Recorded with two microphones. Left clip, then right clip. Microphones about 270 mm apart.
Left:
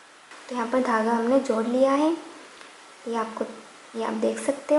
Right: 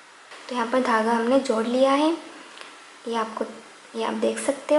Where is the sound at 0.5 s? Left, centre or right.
Centre.